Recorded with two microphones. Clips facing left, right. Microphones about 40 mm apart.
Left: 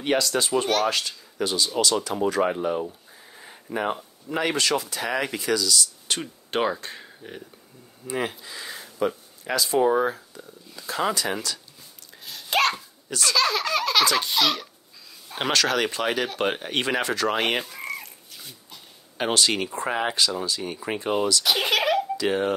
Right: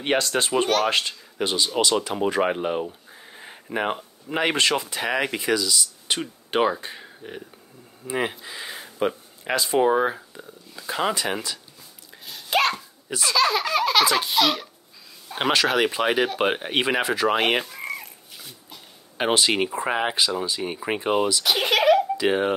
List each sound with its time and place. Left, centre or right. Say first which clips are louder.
0.0 s speech: right 1 dB; right; by 11.6 s centre
12.3 s sneeze: right 1 dB; centre
13.1 s speech: right 2 dB; centre
19.1 s speech: right 2 dB; centre
21.5 s a child's voice: right 6 dB; centre
22.1 s speech: right 2 dB; centre